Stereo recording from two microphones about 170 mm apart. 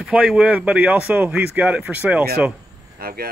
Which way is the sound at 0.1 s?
5° right (ahead or behind).